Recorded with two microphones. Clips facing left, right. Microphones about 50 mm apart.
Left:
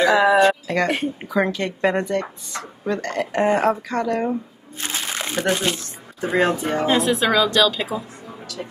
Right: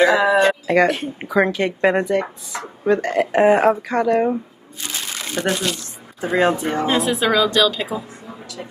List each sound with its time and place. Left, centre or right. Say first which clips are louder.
0.1 s speech: even; centre
0.5 s a woman's voice: right 4 dB; centre
4.9 s crumpling: left 2 dB; left
5.5 s speech: left 1 dB; left
6.2 s speech: right 2 dB; centre